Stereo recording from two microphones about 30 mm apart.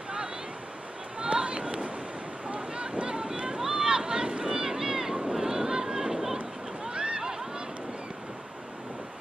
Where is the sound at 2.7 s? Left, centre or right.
Right.